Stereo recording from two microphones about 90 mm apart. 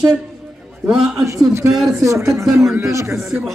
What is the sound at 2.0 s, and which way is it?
A man's voice, 35° right (ahead or behind).